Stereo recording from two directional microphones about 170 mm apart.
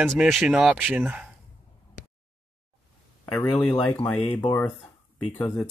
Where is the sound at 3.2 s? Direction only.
15° left (ahead or behind).